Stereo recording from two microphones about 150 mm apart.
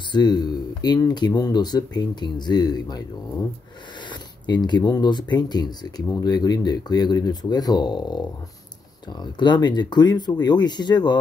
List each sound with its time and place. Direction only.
0.1 s speech: 30° left (ahead or behind)